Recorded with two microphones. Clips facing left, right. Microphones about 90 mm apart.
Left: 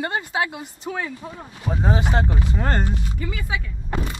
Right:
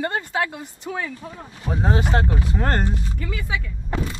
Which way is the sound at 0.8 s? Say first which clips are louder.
Even; 20° left (ahead or behind).